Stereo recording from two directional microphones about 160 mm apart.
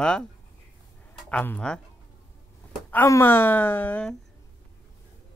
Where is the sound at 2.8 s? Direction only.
15° left (ahead or behind).